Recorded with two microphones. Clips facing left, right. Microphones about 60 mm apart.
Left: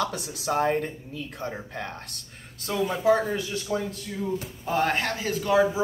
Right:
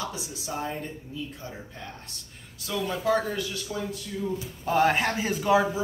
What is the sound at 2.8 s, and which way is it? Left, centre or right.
Speech, centre.